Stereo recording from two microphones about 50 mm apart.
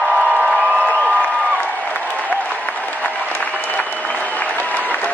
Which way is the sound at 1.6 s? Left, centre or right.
Left.